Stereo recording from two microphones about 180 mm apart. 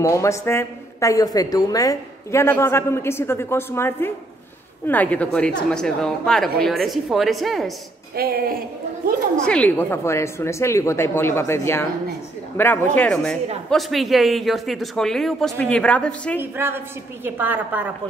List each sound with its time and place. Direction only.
0.0 s speech: 15° left (ahead or behind); by 7.7 s centre (ahead or behind)
8.2 s a woman's voice: 60° right (ahead or behind)
9.4 s speech: 5° left (ahead or behind)
16.3 s a woman's voice: 10° right (ahead or behind)